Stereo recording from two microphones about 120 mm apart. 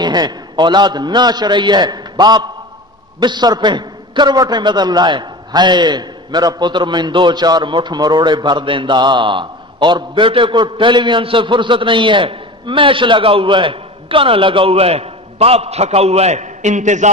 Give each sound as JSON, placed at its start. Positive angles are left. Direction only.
{"t": 0.0, "sound": "a man's voice", "side_deg": -35}